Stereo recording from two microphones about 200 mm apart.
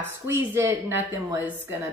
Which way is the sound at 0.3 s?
10° right (ahead or behind).